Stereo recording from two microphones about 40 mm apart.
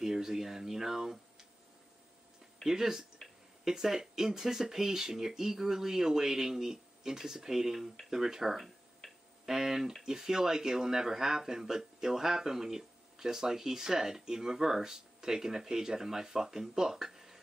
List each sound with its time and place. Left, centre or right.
0.0 s speech: centre
2.6 s speech: centre